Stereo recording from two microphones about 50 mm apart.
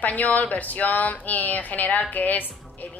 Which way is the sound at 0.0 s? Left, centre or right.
Left.